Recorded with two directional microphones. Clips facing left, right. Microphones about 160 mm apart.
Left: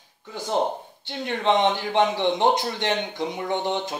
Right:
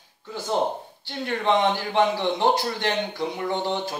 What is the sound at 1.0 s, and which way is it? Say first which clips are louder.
A man's voice: left 1 dB; 20° left (ahead or behind).